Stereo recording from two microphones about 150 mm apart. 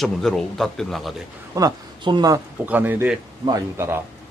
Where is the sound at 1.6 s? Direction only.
30° right (ahead or behind).